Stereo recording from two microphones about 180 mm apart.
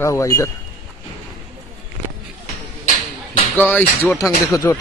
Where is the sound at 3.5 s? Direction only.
10° left (ahead or behind).